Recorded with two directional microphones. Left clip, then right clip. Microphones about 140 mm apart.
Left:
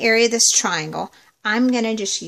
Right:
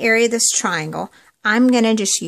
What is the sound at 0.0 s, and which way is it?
A woman's voice, 25° right (ahead or behind).